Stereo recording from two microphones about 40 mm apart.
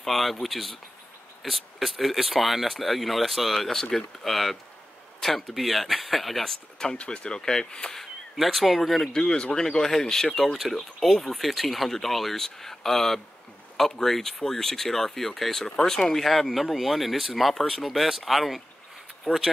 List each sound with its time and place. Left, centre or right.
0.0 s speech: centre
7.0 s speech: left
8.4 s speech: centre
9.1 s speech: centre
19.3 s speech: left